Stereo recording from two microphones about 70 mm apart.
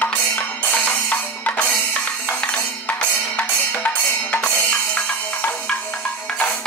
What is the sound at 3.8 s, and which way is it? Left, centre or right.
Drum, left.